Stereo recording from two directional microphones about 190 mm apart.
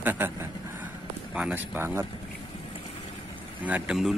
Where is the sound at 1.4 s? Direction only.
10° right (ahead or behind).